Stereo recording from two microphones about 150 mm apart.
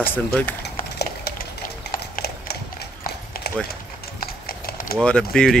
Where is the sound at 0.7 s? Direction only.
90° left.